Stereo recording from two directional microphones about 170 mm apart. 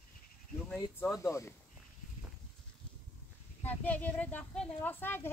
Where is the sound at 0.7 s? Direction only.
15° left (ahead or behind).